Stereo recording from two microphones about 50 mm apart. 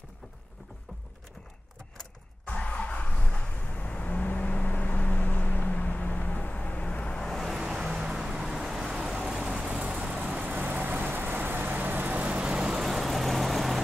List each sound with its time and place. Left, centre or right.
2.4 s vehicle: left
7.2 s vehicle: centre
7.4 s vehicle: centre
9.4 s vehicle: right
12.4 s vehicle: centre
12.8 s vehicle: centre